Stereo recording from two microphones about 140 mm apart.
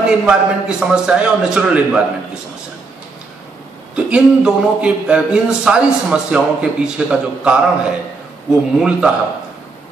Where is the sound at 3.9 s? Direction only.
10° right (ahead or behind).